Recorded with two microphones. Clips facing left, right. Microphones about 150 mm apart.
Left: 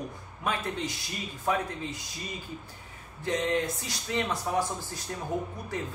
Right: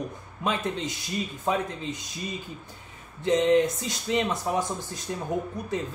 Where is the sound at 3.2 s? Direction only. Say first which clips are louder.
Right 8 dB; 20° right (ahead or behind).